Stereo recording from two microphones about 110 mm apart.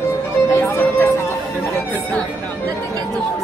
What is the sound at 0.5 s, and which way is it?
Music, 25° left (ahead or behind).